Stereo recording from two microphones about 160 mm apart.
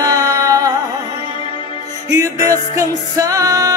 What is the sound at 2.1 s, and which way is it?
Music, 20° right (ahead or behind).